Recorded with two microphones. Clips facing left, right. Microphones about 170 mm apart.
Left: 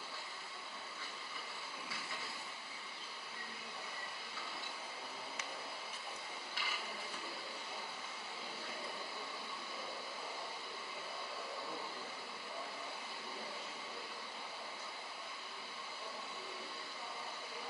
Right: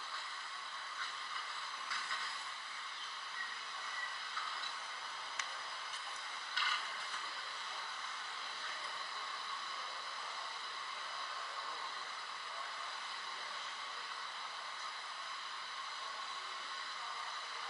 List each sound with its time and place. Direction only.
1.9 s train: 10° left (ahead or behind)
6.5 s mechanisms: 10° left (ahead or behind)